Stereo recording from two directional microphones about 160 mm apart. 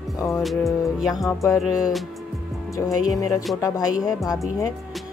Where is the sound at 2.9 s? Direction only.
20° left (ahead or behind).